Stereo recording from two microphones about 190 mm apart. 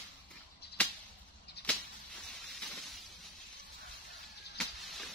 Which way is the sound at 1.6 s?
60° left (ahead or behind).